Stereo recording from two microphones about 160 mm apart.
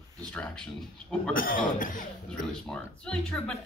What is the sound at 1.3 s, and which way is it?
Speech, 60° left (ahead or behind).